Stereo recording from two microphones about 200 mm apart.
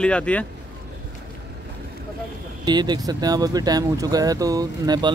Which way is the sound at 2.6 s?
20° right (ahead or behind).